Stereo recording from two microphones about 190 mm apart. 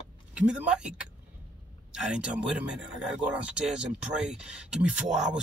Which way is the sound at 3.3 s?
5° right (ahead or behind).